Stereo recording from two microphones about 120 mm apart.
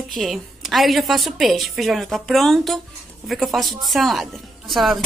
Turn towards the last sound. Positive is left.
turn(degrees=0)  # may be behind; listen again after turning